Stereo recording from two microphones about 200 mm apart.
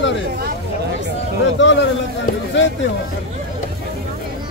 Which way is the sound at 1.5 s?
65° left (ahead or behind).